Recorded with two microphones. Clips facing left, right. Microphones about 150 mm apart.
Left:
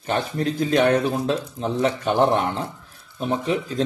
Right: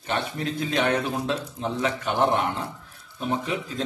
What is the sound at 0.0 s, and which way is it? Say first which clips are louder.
A man's voice: left 4 dB; 40° left (ahead or behind).